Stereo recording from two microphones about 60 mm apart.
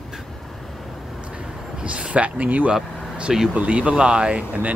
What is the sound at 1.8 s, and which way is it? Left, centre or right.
Speech, centre.